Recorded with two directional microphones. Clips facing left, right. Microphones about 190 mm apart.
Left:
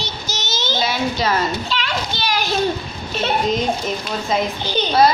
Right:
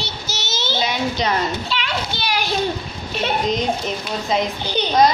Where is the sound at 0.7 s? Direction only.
15° right (ahead or behind).